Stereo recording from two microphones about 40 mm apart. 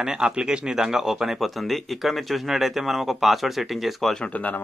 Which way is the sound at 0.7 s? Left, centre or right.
Centre.